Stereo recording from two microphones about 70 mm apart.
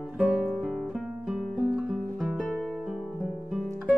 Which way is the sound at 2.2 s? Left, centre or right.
Centre.